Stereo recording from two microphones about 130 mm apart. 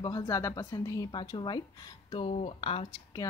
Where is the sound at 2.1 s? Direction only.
45° left (ahead or behind).